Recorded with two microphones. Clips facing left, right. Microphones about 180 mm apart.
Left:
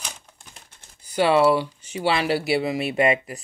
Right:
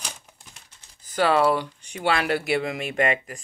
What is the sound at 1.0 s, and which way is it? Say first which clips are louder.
Typing: left 2 dB; 45° right (ahead or behind).